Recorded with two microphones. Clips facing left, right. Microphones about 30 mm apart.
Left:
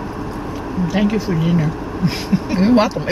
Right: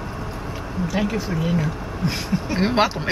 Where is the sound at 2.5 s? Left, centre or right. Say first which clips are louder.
Left 6 dB; centre.